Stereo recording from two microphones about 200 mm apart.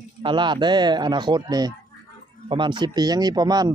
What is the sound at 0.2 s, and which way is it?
A man's voice, 25° right (ahead or behind).